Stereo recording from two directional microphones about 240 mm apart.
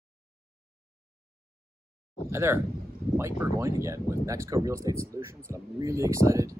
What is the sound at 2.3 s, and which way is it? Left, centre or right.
Speech, centre.